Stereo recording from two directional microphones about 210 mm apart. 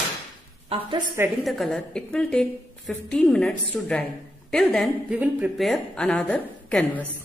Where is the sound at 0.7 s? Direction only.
25° right (ahead or behind).